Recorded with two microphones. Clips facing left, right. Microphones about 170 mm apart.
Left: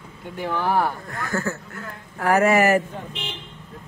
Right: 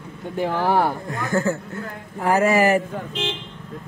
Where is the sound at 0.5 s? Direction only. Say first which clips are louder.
Right 1 dB; 35° right (ahead or behind).